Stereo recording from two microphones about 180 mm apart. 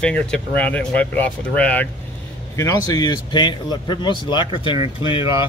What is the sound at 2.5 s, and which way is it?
A man's voice, 20° left (ahead or behind).